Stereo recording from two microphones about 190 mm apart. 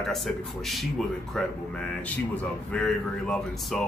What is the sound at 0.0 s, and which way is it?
A man's voice, centre (ahead or behind).